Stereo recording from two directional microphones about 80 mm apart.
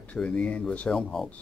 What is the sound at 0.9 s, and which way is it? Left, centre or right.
Speech, centre.